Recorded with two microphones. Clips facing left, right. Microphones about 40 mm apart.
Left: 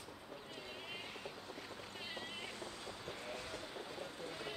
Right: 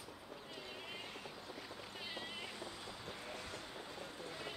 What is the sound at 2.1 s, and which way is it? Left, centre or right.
Cat, centre.